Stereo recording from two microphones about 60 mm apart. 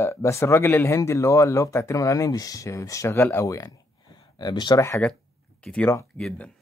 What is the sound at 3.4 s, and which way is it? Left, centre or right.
Speech, left.